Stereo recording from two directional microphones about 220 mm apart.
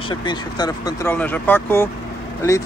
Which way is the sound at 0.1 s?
20° left (ahead or behind).